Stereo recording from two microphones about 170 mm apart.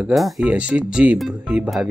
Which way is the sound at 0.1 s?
Centre (ahead or behind).